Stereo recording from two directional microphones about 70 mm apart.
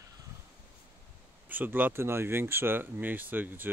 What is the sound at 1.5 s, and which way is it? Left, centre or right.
Speech, right.